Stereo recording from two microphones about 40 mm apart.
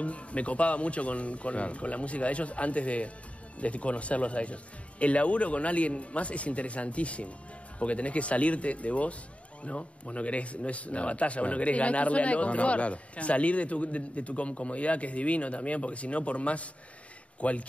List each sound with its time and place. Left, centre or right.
0.0 s speech: left